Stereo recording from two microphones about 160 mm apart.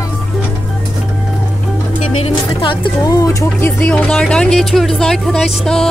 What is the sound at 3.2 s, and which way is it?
Speech, 10° left (ahead or behind).